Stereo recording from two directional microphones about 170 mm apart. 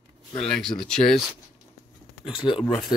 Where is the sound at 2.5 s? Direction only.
5° left (ahead or behind).